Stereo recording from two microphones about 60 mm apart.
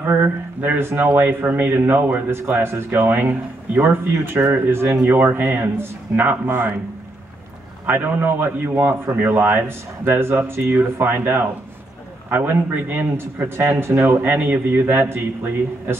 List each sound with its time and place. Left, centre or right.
0.0 s a sound: right
1.1 s a man's voice: right
2.3 s a man's voice: right
7.8 s a man's voice: right